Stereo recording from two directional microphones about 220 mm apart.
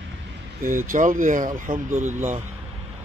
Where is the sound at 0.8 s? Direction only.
35° right (ahead or behind).